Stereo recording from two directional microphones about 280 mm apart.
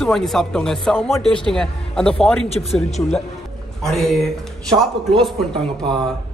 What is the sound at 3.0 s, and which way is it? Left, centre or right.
A man's voice, centre.